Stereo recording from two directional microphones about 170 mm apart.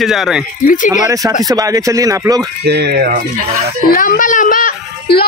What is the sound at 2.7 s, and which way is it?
Speech, 75° right (ahead or behind).